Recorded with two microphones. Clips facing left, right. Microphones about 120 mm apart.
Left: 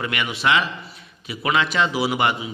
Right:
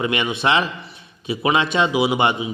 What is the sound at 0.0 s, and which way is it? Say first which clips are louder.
A man's voice: right 3 dB; 25° right (ahead or behind).